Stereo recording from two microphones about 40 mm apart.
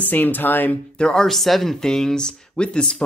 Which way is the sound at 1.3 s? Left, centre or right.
Centre.